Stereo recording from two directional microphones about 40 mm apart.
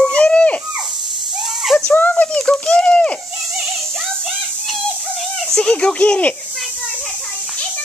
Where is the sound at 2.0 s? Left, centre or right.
Left.